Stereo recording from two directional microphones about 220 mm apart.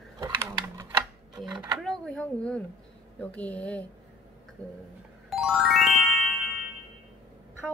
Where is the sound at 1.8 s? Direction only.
Centre (ahead or behind).